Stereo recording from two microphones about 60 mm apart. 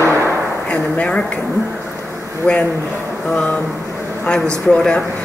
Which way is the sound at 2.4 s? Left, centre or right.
Centre.